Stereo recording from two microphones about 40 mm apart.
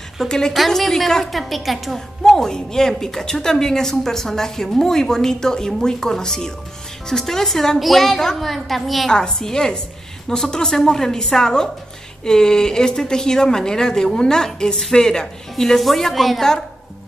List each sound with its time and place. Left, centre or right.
0.3 s a woman's voice: centre
9.1 s a woman's voice: centre